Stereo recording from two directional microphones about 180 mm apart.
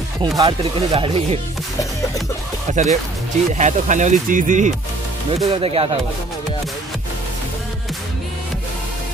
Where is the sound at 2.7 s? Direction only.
40° right (ahead or behind).